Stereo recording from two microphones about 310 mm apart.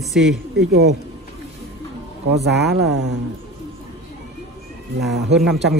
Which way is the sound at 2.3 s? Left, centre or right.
Right.